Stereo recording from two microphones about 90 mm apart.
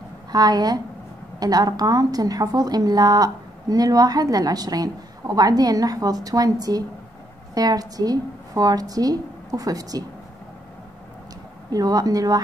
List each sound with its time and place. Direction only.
0.3 s a woman's voice: 50° right (ahead or behind)
11.7 s a woman's voice: 45° right (ahead or behind)